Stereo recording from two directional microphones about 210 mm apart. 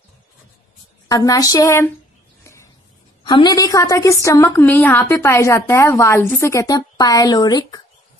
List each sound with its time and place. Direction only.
1.0 s a woman's voice: 15° left (ahead or behind)
2.4 s a sound: 15° left (ahead or behind)
3.3 s a woman's voice: 20° left (ahead or behind)